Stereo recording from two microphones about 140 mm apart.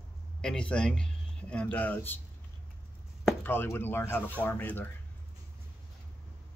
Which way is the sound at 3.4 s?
15° left (ahead or behind).